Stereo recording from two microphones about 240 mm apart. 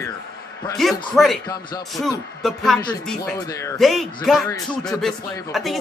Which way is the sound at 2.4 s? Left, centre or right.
Centre.